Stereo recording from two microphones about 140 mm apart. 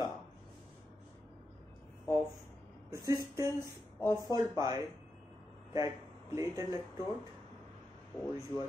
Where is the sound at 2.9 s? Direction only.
20° right (ahead or behind).